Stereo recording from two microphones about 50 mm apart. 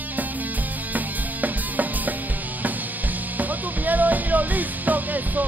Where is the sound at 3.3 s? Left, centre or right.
Right.